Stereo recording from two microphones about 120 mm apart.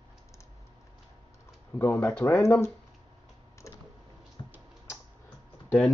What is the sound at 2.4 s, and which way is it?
Speech, 20° left (ahead or behind).